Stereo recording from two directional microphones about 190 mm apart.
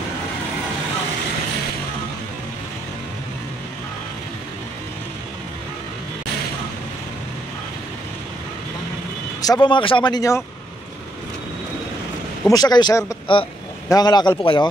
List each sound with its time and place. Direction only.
9.4 s speech: 20° left (ahead or behind)
12.4 s a man's voice: 20° left (ahead or behind)